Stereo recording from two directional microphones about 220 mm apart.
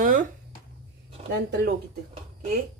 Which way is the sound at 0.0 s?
35° right (ahead or behind).